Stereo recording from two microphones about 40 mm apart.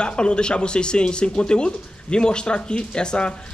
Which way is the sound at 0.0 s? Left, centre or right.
Left.